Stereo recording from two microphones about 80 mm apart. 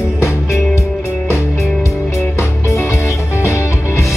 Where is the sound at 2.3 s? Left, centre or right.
Left.